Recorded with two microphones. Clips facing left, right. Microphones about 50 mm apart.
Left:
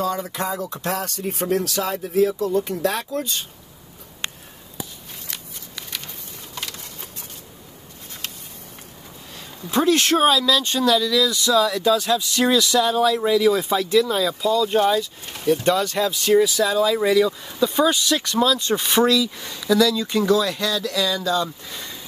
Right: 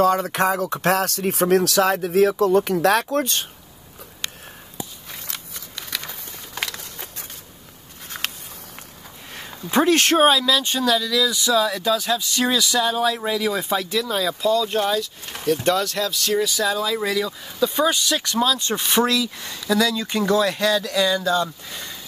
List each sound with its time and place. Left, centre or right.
0.0 s speech: right
6.6 s a sound: right
8.2 s a sound: right
9.3 s speech: right
10.2 s speech: centre
11.4 s speech: centre
11.8 s speech: centre
16.3 s speech: centre
19.7 s speech: right
21.6 s speech: centre